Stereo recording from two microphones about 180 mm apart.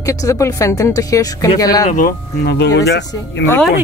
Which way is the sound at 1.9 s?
50° left (ahead or behind).